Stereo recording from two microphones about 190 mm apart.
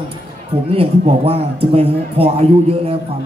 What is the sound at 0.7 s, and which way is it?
A man's voice, 30° right (ahead or behind).